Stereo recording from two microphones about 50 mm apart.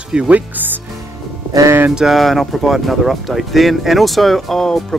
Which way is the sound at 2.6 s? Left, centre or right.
Centre.